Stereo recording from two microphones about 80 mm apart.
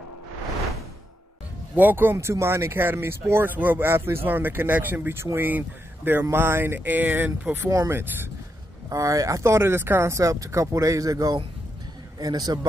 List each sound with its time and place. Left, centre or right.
1.8 s speech: right
8.8 s speech: right
12.2 s a man's voice: right